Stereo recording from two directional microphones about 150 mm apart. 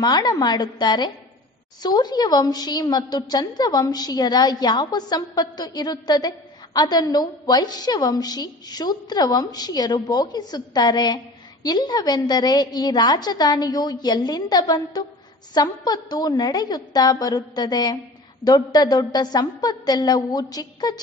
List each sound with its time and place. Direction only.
0.0 s a woman's voice: 25° left (ahead or behind)